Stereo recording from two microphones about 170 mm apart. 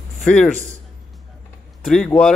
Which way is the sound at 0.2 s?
5° left (ahead or behind).